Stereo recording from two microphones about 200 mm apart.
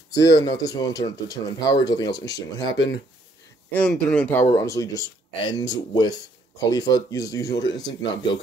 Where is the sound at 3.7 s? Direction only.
5° left (ahead or behind).